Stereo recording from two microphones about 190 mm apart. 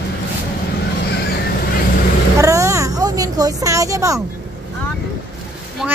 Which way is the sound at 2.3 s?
15° right (ahead or behind).